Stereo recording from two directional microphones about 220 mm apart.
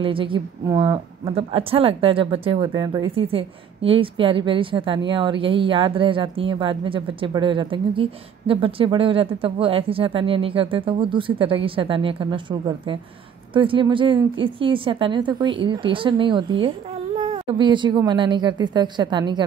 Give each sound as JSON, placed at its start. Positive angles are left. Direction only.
{"t": 0.0, "sound": "a woman's voice", "side_deg": -25}